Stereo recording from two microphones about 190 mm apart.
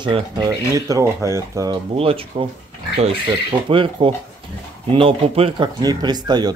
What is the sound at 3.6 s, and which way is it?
Speech, 30° right (ahead or behind).